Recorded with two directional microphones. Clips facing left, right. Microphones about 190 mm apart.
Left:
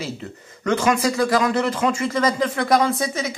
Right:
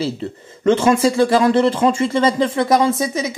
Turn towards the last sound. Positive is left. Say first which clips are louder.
# right 4 dB
turn(degrees=-20)  # may be behind; listen again after turning